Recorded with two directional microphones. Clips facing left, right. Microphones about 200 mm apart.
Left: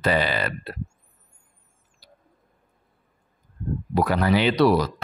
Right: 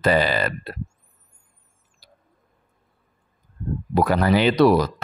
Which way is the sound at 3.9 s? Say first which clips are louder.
Right 2 dB; 45° right (ahead or behind).